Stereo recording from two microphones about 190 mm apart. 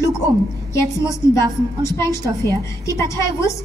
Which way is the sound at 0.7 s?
15° left (ahead or behind).